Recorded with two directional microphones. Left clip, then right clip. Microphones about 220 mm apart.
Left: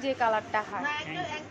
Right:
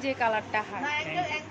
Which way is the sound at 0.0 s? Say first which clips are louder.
Even; centre (ahead or behind).